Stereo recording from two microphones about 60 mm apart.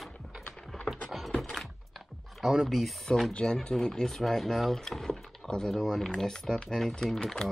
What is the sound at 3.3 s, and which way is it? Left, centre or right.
Speech, centre.